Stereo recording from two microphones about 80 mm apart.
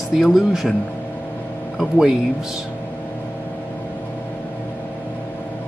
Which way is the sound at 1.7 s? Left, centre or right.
Centre.